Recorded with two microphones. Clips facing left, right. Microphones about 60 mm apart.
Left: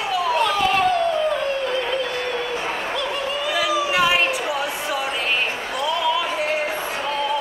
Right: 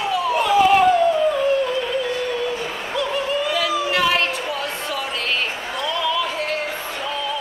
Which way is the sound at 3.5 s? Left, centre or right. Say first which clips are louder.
Even; centre.